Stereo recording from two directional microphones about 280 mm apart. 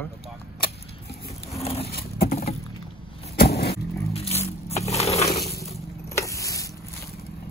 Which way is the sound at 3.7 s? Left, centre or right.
Left.